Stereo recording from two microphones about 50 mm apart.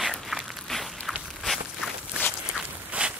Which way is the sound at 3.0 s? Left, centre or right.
Right.